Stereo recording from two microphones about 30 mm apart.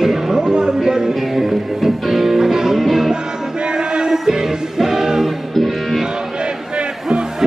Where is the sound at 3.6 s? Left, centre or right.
Right.